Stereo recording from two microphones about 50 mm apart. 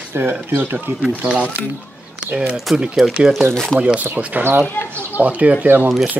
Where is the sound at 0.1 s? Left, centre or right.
Right.